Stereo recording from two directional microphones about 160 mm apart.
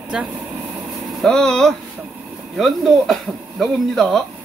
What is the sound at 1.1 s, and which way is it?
Speech, centre (ahead or behind).